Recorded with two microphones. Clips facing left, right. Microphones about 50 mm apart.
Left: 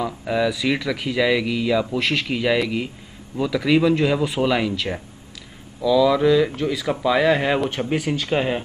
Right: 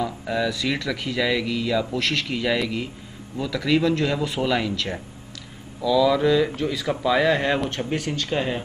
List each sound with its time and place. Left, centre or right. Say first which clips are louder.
0.0 s speech: left 3 dB; centre